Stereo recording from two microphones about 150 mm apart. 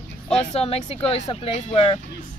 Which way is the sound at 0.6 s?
40° left (ahead or behind).